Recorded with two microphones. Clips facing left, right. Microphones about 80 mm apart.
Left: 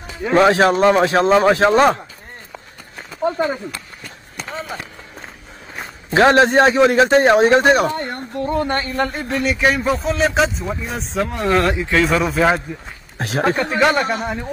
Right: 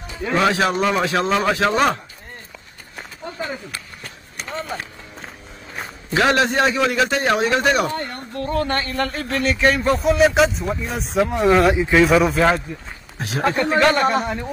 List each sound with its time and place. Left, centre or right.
0.4 s a man's voice: left
4.5 s speech: centre
6.0 s a man's voice: left; by 11.7 s centre
11.7 s speech: centre
12.0 s speech: centre
13.2 s speech: left
13.7 s speech: centre